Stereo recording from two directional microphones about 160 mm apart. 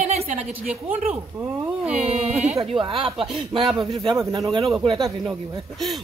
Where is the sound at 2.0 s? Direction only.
40° right (ahead or behind).